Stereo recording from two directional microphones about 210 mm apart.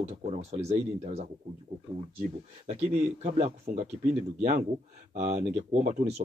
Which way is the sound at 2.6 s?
30° right (ahead or behind).